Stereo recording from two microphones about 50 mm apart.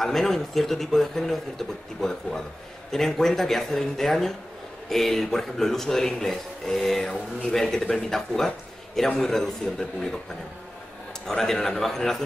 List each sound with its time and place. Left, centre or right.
0.0 s speech: centre
11.2 s speech: centre